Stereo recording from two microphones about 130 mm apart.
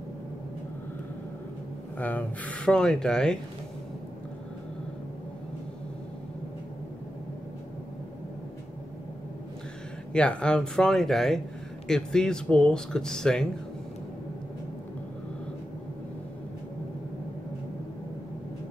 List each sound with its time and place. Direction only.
2.0 s speech: 10° left (ahead or behind)
10.1 s speech: 10° left (ahead or behind)